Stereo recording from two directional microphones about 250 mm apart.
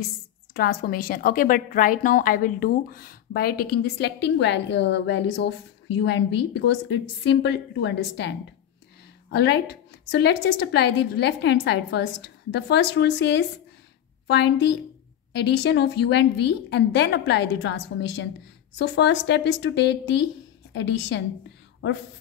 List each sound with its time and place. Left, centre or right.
0.6 s a woman's voice: left